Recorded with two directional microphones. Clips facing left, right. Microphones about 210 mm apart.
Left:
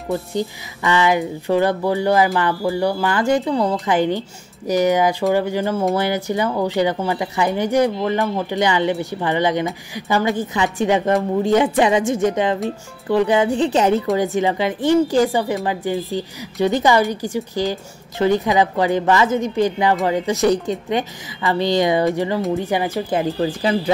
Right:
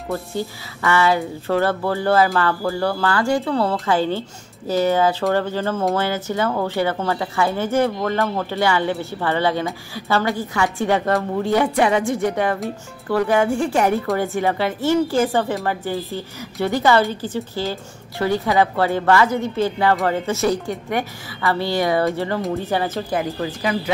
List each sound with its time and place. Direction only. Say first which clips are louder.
0.1 s a woman's voice: left 3 dB; 15° left (ahead or behind)
23.4 s speech: left 4 dB; 30° left (ahead or behind)